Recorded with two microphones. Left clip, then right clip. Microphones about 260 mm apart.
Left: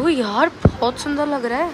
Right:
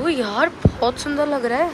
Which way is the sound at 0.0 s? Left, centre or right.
Centre.